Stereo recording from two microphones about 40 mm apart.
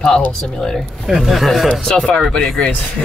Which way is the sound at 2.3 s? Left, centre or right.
Left.